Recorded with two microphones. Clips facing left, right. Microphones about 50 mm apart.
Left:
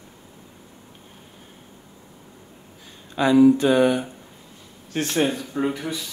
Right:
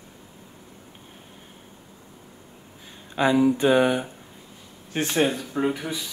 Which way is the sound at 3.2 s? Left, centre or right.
Centre.